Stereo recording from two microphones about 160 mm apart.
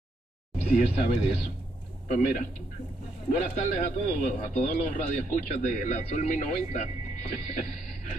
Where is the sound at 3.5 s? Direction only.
45° left (ahead or behind).